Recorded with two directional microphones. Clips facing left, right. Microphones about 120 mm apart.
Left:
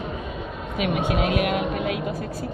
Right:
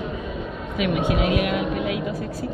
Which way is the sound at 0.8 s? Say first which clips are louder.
Right 1 dB; 45° left (ahead or behind).